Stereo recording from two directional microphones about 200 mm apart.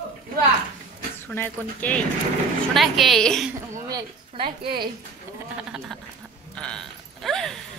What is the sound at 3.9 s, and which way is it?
A woman's voice, 25° right (ahead or behind).